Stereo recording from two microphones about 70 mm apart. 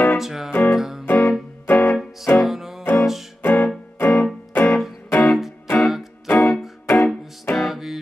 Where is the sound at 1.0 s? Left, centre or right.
Left.